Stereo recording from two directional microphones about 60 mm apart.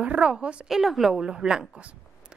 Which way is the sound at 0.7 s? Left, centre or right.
Centre.